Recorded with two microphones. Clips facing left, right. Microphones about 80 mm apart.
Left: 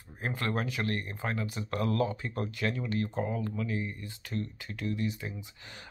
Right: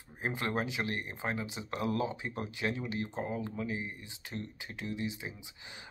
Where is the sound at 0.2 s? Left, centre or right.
Centre.